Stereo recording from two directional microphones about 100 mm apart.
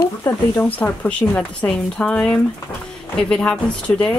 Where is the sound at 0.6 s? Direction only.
15° left (ahead or behind).